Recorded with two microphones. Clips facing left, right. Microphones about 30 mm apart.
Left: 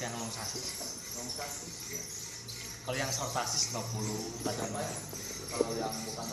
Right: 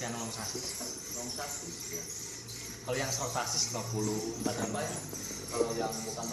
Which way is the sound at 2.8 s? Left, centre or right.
Centre.